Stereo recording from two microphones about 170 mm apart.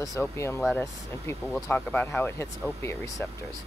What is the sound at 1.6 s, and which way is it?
Speech, 10° left (ahead or behind).